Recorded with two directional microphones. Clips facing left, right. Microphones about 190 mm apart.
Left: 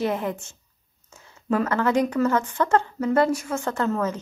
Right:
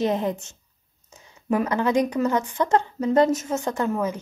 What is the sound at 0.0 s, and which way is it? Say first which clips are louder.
A woman's voice: right 2 dB; 20° right (ahead or behind).